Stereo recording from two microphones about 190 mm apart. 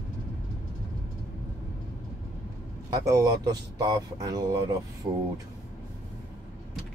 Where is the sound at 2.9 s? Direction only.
20° right (ahead or behind).